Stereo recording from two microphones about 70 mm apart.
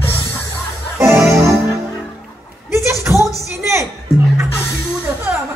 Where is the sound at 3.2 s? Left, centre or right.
Left.